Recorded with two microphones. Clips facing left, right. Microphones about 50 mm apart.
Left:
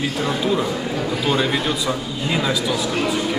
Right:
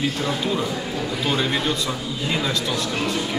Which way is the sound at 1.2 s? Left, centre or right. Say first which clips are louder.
Left 2 dB; centre.